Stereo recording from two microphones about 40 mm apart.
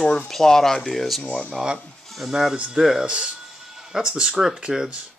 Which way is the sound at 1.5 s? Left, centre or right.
Centre.